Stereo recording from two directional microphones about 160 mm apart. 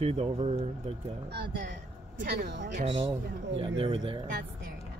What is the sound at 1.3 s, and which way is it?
Speech, 90° right.